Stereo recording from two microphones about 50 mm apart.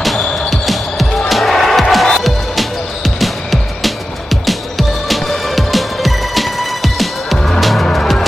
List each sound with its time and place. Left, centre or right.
0.5 s music: centre
7.3 s music: centre